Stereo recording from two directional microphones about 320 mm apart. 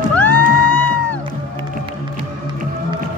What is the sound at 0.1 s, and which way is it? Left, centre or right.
Music, centre.